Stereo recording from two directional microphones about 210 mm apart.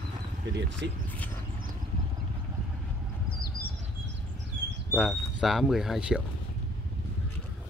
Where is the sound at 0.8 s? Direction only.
55° right (ahead or behind).